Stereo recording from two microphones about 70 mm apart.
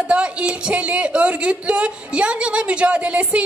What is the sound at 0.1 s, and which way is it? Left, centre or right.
A woman's voice, centre.